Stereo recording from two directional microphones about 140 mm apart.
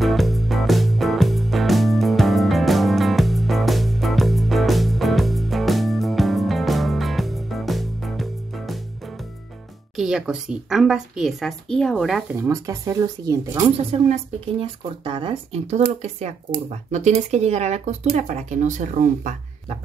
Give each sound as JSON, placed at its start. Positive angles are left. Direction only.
{"t": 0.0, "sound": "music", "side_deg": 0}
{"t": 9.9, "sound": "a woman's voice", "side_deg": -5}
{"t": 12.4, "sound": "speech", "side_deg": -25}
{"t": 13.7, "sound": "speech", "side_deg": -45}